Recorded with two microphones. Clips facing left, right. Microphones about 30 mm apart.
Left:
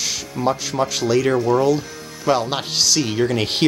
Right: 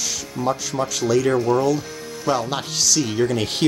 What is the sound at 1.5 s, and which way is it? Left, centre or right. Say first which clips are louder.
Speech: left 2 dB; left.